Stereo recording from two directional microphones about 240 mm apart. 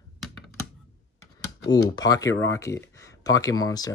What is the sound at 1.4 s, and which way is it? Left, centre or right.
Speech, centre.